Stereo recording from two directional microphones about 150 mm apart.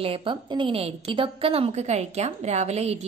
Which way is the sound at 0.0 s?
35° right (ahead or behind).